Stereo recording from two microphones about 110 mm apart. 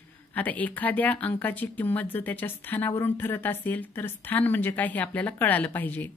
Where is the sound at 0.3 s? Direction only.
15° left (ahead or behind).